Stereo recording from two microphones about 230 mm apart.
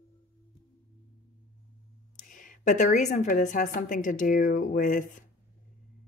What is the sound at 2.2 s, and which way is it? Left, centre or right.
Speech, left.